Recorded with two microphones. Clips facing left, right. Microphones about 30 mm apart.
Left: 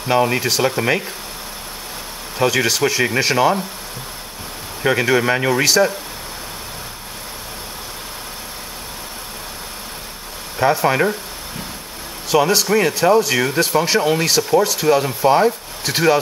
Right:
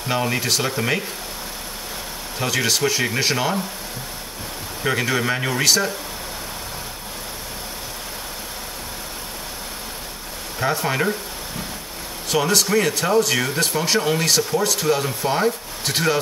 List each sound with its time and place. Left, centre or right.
0.1 s speech: centre
2.3 s speech: centre
4.8 s speech: centre
10.6 s speech: centre
12.3 s speech: centre